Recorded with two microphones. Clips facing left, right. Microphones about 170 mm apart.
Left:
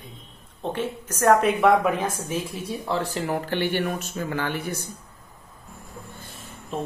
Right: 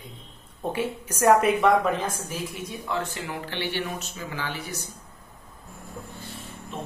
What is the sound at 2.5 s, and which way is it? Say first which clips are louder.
Speech: left 3 dB; 30° left (ahead or behind).